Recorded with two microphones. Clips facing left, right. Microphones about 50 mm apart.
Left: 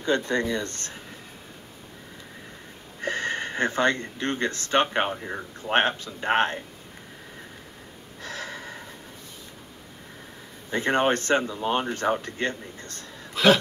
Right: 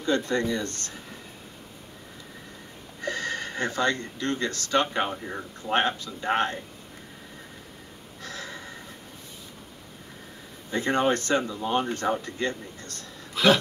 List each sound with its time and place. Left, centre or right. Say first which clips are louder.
0.0 s speech: left 1 dB; left
3.0 s speech: left 2 dB; left
8.2 s gasp: left 3 dB; left
10.7 s speech: left 1 dB; left